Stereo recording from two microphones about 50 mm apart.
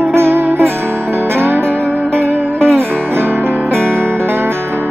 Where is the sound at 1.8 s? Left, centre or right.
Left.